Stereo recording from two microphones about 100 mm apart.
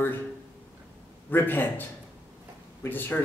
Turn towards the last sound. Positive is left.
turn(degrees=20)  # may be behind; listen again after turning